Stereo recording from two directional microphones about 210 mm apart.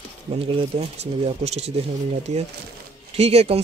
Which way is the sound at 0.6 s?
30° right (ahead or behind).